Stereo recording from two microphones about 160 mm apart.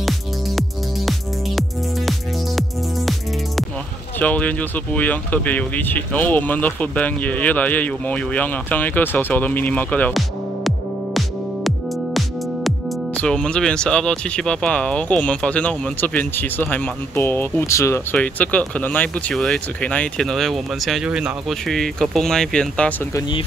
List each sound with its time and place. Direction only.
0.6 s music: centre (ahead or behind)
4.2 s music: 10° left (ahead or behind)